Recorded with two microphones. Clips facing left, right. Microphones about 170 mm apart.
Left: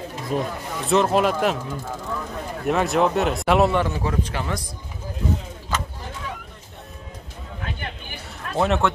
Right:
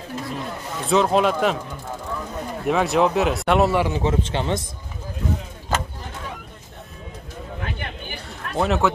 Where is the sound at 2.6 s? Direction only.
Centre (ahead or behind).